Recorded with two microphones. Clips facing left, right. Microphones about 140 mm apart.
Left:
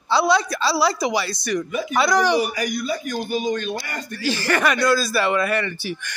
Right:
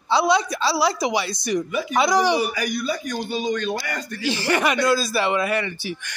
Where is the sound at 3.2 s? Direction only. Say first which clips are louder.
Even; 25° right (ahead or behind).